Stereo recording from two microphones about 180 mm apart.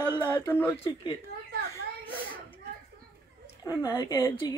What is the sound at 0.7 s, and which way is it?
Speech, 30° left (ahead or behind).